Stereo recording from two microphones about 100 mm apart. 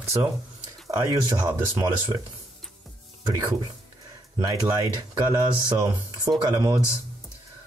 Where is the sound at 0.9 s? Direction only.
30° right (ahead or behind).